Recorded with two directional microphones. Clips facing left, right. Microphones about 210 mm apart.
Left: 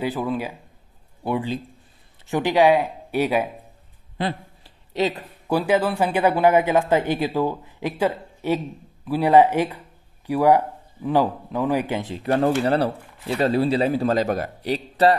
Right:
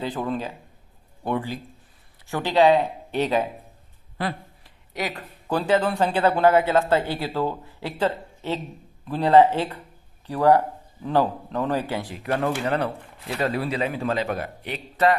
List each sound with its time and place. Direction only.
0.0 s a man's voice: 10° left (ahead or behind)
2.2 s a man's voice: 15° left (ahead or behind)
4.2 s a sound: 25° left (ahead or behind)
5.5 s a man's voice: 10° left (ahead or behind); by 15.1 s 35° left (ahead or behind)